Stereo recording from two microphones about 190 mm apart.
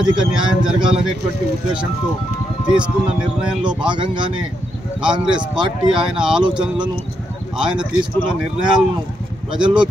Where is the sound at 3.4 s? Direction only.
5° right (ahead or behind).